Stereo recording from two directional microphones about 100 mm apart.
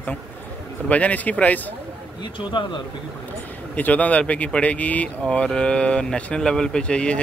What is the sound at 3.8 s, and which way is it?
Speech, 15° left (ahead or behind).